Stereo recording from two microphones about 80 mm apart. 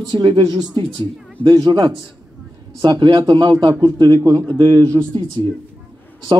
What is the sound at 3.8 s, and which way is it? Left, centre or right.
Speech, right.